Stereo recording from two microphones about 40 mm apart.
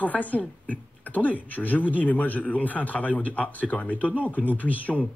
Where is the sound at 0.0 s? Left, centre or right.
Left.